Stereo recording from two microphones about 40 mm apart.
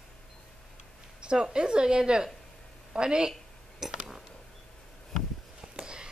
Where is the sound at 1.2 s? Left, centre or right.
Right.